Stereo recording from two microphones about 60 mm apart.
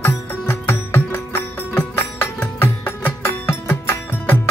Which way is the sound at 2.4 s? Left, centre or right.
Left.